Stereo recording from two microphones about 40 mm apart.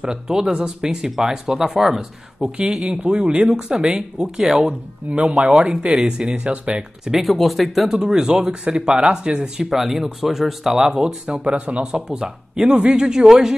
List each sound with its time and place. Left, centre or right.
0.0 s speech: centre
2.0 s speech: right
3.6 s speech: centre
5.1 s speech: right
5.4 s speech: right
7.1 s speech: centre
7.9 s speech: centre
9.7 s speech: centre; by 11.9 s right
11.9 s speech: centre